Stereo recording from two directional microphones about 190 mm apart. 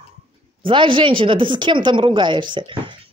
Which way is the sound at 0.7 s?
25° right (ahead or behind).